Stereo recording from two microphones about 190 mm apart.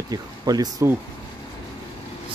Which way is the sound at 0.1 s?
20° right (ahead or behind).